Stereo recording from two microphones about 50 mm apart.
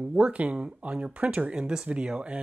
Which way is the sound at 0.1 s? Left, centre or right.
Right.